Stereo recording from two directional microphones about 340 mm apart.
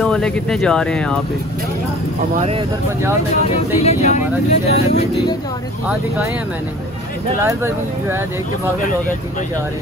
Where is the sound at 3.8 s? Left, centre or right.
Centre.